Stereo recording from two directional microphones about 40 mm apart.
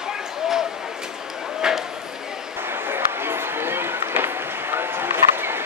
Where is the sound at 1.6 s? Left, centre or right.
Centre.